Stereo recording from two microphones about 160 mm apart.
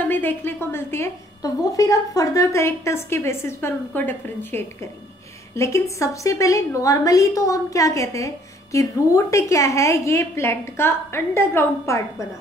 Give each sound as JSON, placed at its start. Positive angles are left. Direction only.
{"t": 0.0, "sound": "a woman's voice", "side_deg": 10}